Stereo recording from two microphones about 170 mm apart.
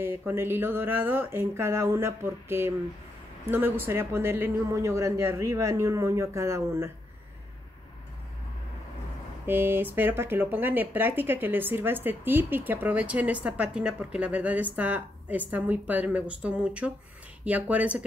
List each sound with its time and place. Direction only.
0.0 s speech: 15° right (ahead or behind)
9.5 s speech: 10° right (ahead or behind)